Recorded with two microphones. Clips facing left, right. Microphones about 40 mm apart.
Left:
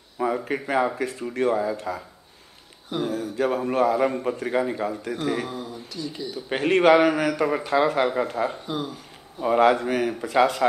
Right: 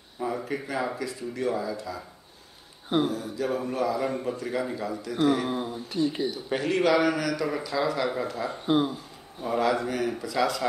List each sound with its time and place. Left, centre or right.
0.5 s a man's voice: left
3.1 s a man's voice: left
4.1 s a man's voice: left
5.5 s speech: right
6.5 s a man's voice: left
8.6 s speech: right
9.4 s a man's voice: left